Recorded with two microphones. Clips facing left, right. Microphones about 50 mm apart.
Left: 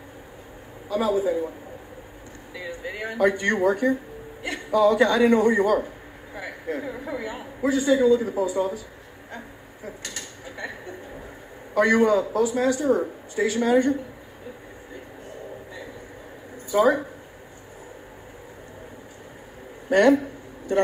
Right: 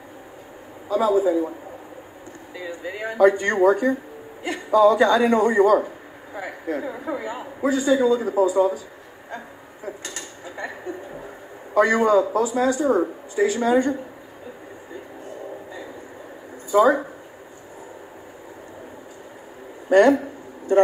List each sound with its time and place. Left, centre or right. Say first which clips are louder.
0.8 s a woman's voice: right 4 dB; right
2.5 s a sound: right 2 dB; left
3.1 s a woman's voice: right 4 dB; right
9.8 s mechanisms: right 3 dB; right
11.7 s a woman's voice: right 2 dB; right
16.7 s a woman's voice: right 3 dB; right
19.9 s a sound: right 2 dB; right